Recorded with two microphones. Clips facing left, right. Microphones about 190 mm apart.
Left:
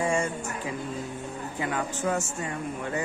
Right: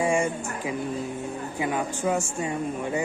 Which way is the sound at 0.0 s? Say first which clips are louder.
Right 3 dB; 10° right (ahead or behind).